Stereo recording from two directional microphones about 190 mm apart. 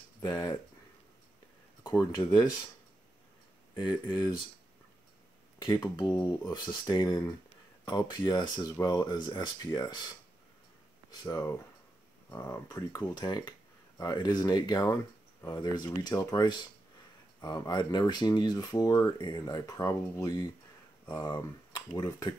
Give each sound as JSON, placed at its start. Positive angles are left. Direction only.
{"t": 0.2, "sound": "speech", "side_deg": 20}
{"t": 1.8, "sound": "a sound", "side_deg": 15}
{"t": 3.8, "sound": "speech", "side_deg": 20}
{"t": 5.7, "sound": "speech", "side_deg": 15}
{"t": 11.1, "sound": "speech", "side_deg": 15}